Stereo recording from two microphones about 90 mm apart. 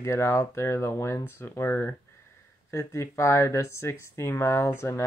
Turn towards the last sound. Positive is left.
turn(degrees=30)  # may be behind; listen again after turning